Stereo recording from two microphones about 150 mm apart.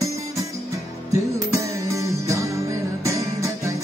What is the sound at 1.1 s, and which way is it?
Music, 20° right (ahead or behind).